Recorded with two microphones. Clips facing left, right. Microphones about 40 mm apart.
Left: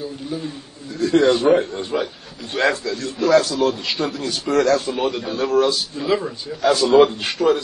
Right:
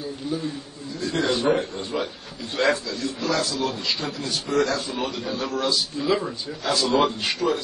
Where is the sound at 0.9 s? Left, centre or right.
Left.